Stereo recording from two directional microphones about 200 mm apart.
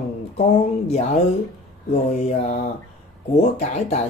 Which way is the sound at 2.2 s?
35° left (ahead or behind).